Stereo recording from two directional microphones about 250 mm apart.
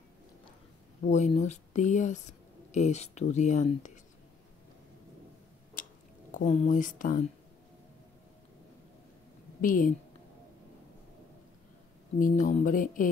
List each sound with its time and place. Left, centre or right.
1.0 s speech: left
5.8 s a sound: left
6.3 s speech: left
9.6 s a woman's voice: left
12.2 s speech: left